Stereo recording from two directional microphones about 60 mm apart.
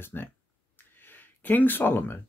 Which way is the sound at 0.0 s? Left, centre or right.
Left.